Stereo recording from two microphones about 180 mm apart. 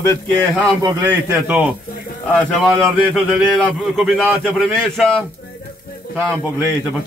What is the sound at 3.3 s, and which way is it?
A man's voice, centre (ahead or behind).